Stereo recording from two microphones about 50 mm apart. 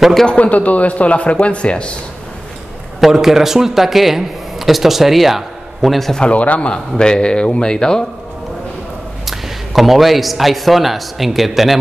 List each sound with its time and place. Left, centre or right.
0.0 s a man's voice: centre
0.3 s a man's voice: left
3.0 s a man's voice: centre
6.1 s a man's voice: left
9.2 s a man's voice: centre